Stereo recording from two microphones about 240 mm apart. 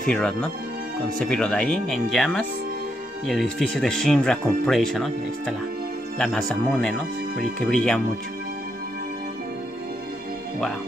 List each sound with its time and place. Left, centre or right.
0.1 s speech: centre
6.1 s speech: centre